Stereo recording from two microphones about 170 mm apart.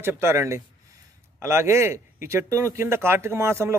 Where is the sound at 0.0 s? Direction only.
15° right (ahead or behind).